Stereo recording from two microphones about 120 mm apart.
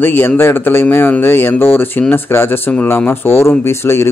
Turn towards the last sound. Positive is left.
turn(degrees=20)  # may be behind; listen again after turning